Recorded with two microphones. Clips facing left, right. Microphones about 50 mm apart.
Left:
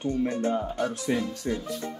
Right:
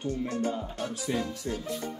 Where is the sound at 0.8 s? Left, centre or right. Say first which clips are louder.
Left 2 dB; left.